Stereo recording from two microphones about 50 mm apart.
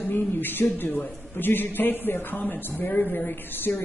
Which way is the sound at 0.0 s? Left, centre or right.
Left.